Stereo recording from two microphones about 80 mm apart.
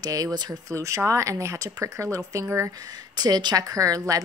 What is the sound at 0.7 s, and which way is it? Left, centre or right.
Speech, right.